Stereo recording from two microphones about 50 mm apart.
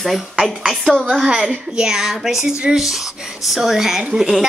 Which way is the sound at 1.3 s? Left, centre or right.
Centre.